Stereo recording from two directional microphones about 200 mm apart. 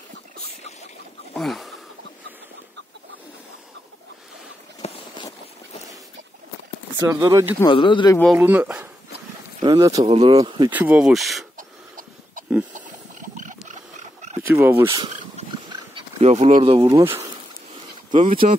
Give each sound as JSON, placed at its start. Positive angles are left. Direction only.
{"t": 1.3, "sound": "a sound", "side_deg": 0}
{"t": 4.8, "sound": "a sound", "side_deg": 25}
{"t": 7.1, "sound": "speech", "side_deg": -15}
{"t": 7.6, "sound": "speech", "side_deg": 25}
{"t": 8.4, "sound": "speech", "side_deg": -10}
{"t": 9.6, "sound": "speech", "side_deg": -20}
{"t": 10.7, "sound": "speech", "side_deg": -10}
{"t": 11.5, "sound": "a sound", "side_deg": -40}
{"t": 12.7, "sound": "wild animals", "side_deg": -40}
{"t": 14.4, "sound": "speech", "side_deg": -10}
{"t": 15.4, "sound": "pig", "side_deg": -30}
{"t": 15.9, "sound": "speech", "side_deg": -30}
{"t": 17.0, "sound": "speech", "side_deg": -10}
{"t": 18.1, "sound": "speech", "side_deg": -25}